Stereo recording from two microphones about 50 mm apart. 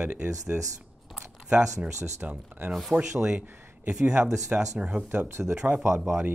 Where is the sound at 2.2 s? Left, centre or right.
Right.